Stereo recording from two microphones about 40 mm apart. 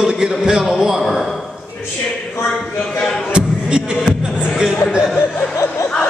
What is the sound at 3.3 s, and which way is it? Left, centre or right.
Music, right.